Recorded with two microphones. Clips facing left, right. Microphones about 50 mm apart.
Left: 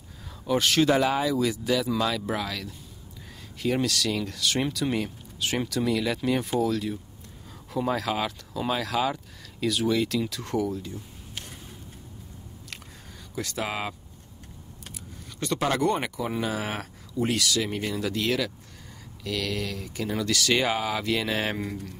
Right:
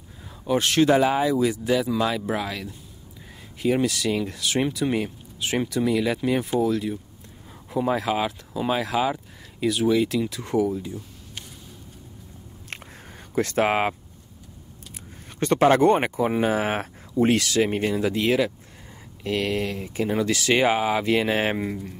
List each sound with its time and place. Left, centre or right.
0.5 s speech: centre
13.3 s speech: right
15.3 s speech: right